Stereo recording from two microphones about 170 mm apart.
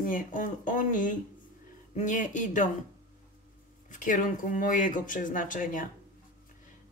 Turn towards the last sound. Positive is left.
turn(degrees=50)  # may be behind; listen again after turning